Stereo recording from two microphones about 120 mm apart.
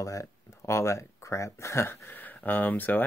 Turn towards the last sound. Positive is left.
turn(degrees=15)  # may be behind; listen again after turning